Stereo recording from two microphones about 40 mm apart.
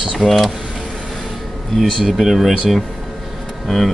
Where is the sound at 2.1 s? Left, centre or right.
Centre.